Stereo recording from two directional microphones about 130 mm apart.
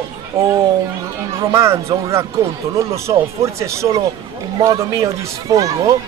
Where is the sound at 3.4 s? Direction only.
20° right (ahead or behind).